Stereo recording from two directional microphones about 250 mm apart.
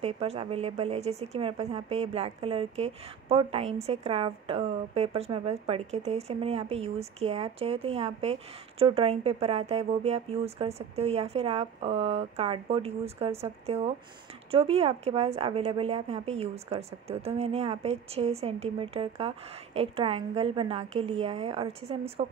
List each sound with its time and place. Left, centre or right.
0.0 s a woman's voice: right